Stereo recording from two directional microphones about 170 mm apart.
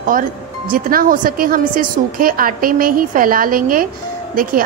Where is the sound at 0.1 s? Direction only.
55° right (ahead or behind).